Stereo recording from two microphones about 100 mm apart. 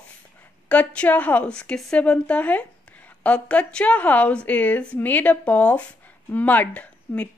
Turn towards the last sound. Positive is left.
turn(degrees=15)  # may be behind; listen again after turning